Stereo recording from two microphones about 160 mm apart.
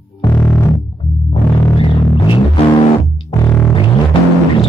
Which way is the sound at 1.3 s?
35° left (ahead or behind).